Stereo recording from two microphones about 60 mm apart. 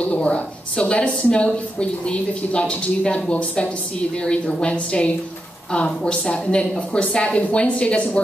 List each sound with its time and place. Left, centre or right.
0.0 s a woman's voice: centre